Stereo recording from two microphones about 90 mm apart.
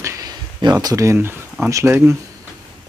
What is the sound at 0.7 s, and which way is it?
Speech, 35° right (ahead or behind).